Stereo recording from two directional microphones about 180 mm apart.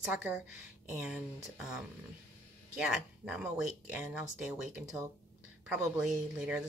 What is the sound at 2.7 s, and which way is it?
Speech, 5° right (ahead or behind).